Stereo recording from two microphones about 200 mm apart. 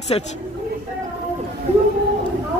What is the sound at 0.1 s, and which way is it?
Speech, 30° left (ahead or behind).